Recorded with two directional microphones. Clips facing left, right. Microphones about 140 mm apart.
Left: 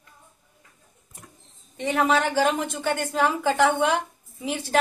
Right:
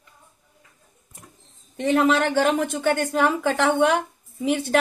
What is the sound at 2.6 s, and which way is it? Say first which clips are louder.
Speech: right 4 dB; 60° right (ahead or behind).